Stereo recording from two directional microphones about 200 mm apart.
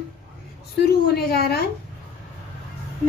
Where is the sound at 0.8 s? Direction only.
50° left (ahead or behind).